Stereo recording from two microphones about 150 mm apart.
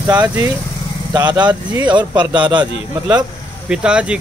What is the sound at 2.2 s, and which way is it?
Speech, 10° right (ahead or behind).